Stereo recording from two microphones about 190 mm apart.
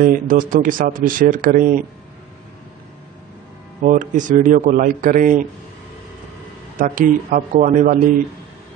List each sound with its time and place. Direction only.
0.0 s speech: 45° right (ahead or behind)
3.8 s speech: 45° right (ahead or behind)
6.8 s speech: 45° right (ahead or behind)